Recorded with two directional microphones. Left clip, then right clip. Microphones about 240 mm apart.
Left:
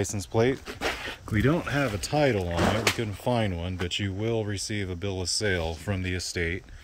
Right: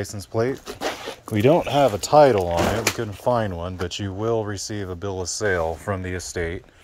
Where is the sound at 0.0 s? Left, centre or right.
Centre.